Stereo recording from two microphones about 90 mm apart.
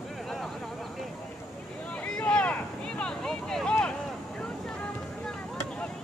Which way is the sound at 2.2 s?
10° left (ahead or behind).